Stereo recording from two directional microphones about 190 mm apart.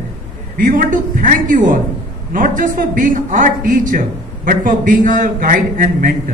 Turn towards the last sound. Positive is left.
turn(degrees=-45)  # may be behind; listen again after turning